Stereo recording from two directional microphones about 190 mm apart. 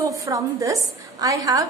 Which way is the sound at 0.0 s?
15° right (ahead or behind).